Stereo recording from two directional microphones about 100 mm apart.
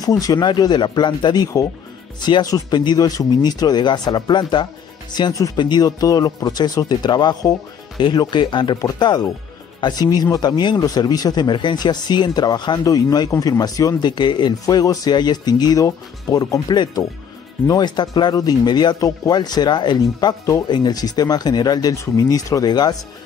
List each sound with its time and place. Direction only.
0.0 s speech: 40° left (ahead or behind)
9.8 s speech: 45° left (ahead or behind)